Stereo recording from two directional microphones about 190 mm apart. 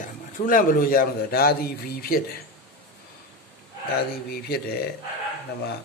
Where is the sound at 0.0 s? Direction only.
45° left (ahead or behind).